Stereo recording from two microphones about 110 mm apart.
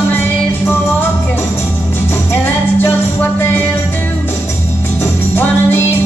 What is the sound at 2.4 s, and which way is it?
Music, 20° left (ahead or behind).